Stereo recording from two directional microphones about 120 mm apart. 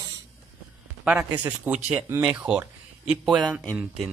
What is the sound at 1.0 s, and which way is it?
A man's voice, 10° right (ahead or behind).